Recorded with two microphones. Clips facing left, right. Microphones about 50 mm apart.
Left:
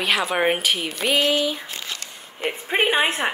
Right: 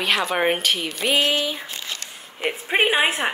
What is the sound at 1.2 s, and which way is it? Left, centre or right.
Speech, right.